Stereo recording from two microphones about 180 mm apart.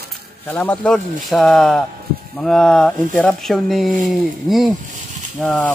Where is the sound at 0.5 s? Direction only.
5° left (ahead or behind).